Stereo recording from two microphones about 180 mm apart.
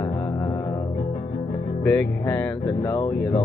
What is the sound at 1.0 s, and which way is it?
Music, 40° left (ahead or behind).